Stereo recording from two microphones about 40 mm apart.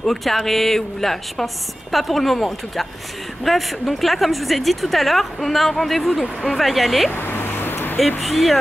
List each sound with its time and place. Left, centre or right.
0.0 s a woman's voice: centre
7.2 s a sound: left
8.2 s a woman's voice: centre